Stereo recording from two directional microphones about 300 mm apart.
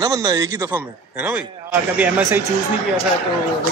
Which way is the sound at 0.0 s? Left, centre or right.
Centre.